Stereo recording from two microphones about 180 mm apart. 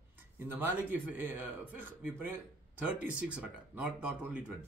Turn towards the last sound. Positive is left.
turn(degrees=-5)  # may be behind; listen again after turning